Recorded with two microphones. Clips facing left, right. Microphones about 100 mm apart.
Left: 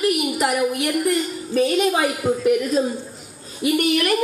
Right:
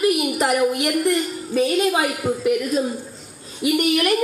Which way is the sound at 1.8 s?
30° left (ahead or behind).